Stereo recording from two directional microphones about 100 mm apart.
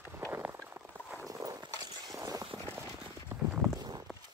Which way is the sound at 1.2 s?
35° right (ahead or behind).